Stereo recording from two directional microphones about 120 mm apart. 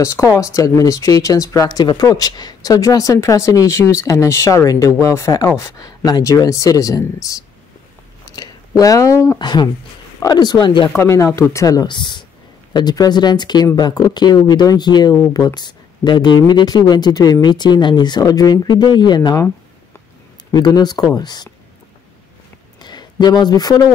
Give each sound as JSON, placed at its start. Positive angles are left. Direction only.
{"t": 0.3, "sound": "speech", "side_deg": 30}
{"t": 9.4, "sound": "speech", "side_deg": 40}
{"t": 11.0, "sound": "speech", "side_deg": 20}
{"t": 20.5, "sound": "speech", "side_deg": 35}
{"t": 22.8, "sound": "a sound", "side_deg": 35}